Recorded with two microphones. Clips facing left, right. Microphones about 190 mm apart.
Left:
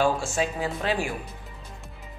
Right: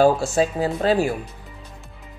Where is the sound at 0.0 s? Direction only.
35° right (ahead or behind).